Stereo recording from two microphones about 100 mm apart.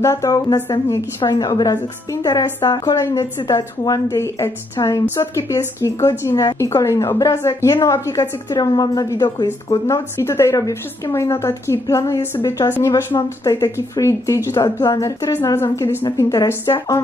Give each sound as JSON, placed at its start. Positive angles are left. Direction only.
{"t": 0.0, "sound": "a woman's voice", "side_deg": 30}
{"t": 13.4, "sound": "a woman's voice", "side_deg": 35}